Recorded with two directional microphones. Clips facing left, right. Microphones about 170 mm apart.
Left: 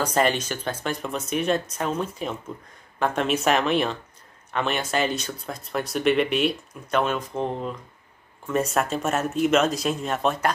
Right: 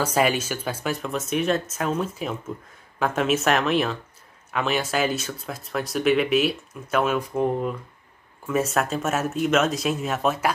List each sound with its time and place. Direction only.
0.0 s speech: 5° right (ahead or behind)